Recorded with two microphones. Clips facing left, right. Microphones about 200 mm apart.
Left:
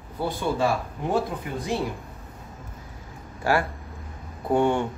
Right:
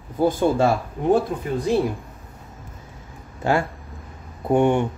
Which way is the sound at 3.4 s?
20° right (ahead or behind).